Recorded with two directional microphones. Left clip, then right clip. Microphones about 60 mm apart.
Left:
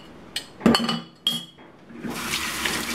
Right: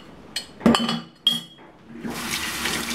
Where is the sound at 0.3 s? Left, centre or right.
Centre.